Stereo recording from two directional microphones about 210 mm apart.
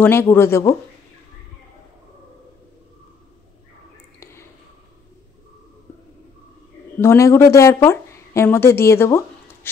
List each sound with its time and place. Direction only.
0.0 s speech: 10° left (ahead or behind)
4.2 s a sound: 10° left (ahead or behind)
7.0 s speech: 15° left (ahead or behind)